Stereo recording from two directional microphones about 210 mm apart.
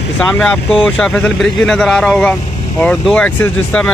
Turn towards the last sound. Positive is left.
turn(degrees=5)  # may be behind; listen again after turning